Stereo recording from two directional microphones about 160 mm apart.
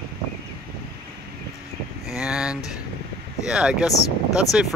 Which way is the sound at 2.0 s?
5° right (ahead or behind).